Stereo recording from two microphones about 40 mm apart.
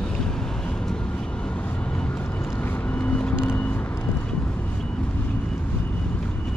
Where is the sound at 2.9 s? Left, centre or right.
Left.